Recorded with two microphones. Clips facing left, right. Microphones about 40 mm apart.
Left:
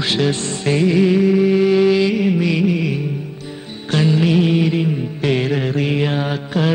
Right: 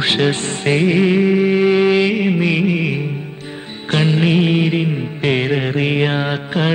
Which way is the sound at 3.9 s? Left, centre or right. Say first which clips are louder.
Even; right.